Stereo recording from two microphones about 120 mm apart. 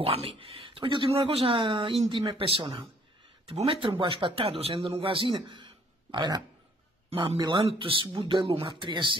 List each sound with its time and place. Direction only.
0.0 s speech: 50° right (ahead or behind)
7.4 s speech: 45° right (ahead or behind)